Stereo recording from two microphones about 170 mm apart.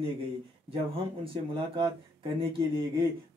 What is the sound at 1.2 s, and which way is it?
Speech, 30° right (ahead or behind).